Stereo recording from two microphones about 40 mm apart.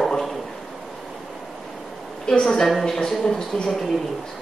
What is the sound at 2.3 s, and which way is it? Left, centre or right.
A woman's voice, centre.